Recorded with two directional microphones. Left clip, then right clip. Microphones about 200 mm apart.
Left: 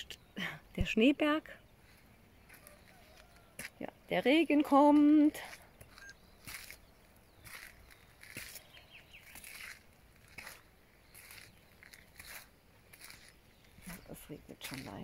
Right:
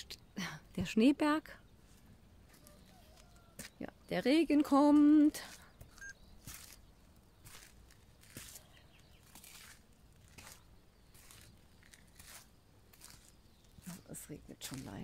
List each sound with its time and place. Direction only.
0.3 s speech: 5° right (ahead or behind)
3.5 s speech: centre (ahead or behind)
14.0 s a sound: centre (ahead or behind)